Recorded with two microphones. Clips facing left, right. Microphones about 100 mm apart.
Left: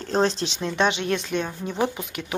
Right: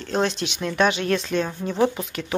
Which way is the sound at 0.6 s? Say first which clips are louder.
Right 3 dB; 20° left (ahead or behind).